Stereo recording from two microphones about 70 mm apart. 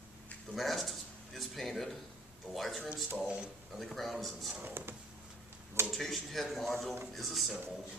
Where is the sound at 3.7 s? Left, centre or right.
Centre.